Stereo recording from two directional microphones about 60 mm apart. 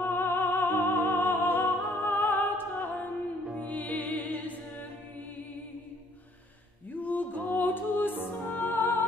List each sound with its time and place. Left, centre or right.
0.0 s music: left
6.9 s music: left